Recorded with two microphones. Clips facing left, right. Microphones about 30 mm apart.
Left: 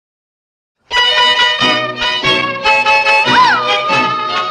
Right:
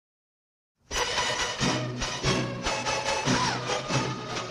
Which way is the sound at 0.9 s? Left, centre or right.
Left.